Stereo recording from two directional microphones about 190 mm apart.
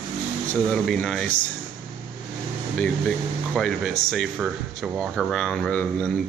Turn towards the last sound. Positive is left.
turn(degrees=5)  # may be behind; listen again after turning